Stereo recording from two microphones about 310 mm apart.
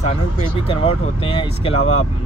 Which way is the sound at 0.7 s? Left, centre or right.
Centre.